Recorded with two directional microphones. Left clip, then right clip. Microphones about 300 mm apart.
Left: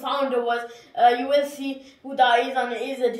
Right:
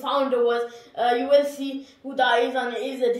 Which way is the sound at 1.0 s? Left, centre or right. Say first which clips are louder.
Left 1 dB; centre.